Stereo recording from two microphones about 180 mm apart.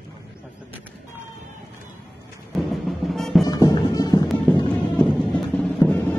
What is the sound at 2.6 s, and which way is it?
Music, centre (ahead or behind).